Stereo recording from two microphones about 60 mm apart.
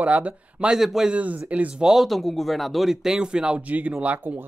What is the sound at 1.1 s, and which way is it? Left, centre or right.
Speech, right.